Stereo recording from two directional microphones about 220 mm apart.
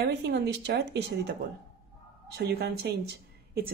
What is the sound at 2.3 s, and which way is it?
A woman's voice, 50° right (ahead or behind).